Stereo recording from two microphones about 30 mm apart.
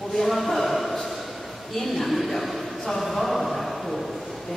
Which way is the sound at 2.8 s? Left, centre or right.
Centre.